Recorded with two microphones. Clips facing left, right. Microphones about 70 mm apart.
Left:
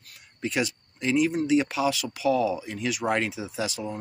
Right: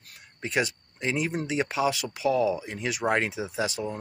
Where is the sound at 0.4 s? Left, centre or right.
Right.